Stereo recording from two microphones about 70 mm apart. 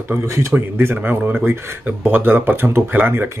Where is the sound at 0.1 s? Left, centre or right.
Right.